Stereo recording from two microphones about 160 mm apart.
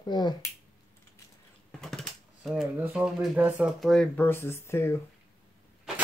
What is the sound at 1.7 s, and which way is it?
Typing, centre (ahead or behind).